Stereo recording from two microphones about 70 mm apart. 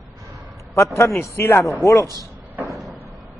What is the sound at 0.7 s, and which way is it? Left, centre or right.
A man's voice, left.